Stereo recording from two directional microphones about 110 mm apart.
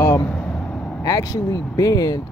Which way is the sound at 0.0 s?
25° left (ahead or behind).